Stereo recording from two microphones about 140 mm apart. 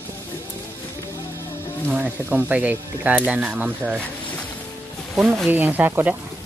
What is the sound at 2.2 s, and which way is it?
Speech, 15° right (ahead or behind).